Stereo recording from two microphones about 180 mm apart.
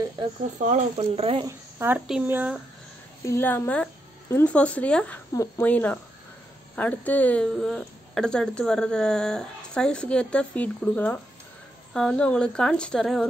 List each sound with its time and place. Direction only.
0.6 s speech: 40° right (ahead or behind)
1.4 s speech: 10° right (ahead or behind)
3.3 s speech: 10° left (ahead or behind)